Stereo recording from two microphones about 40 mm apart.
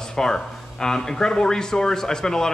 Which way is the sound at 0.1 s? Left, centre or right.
Centre.